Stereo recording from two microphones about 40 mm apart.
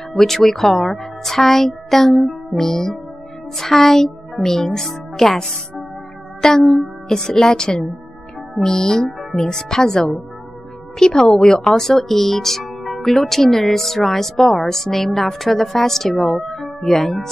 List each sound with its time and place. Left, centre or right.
0.1 s a woman's voice: centre